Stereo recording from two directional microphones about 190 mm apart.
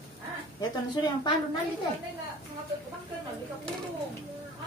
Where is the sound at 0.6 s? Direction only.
20° left (ahead or behind).